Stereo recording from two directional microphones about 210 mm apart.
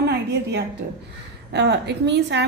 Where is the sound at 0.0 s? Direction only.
50° right (ahead or behind).